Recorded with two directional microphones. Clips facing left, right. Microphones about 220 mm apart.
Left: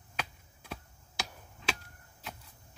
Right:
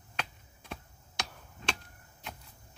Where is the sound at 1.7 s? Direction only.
Centre (ahead or behind).